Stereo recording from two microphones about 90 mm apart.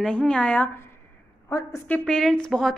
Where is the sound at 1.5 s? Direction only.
35° left (ahead or behind).